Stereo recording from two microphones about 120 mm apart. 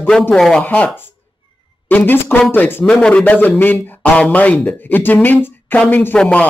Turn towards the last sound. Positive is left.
turn(degrees=10)  # may be behind; listen again after turning